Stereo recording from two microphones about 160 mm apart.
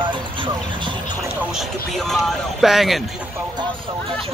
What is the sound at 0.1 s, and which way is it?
Speech, 30° right (ahead or behind).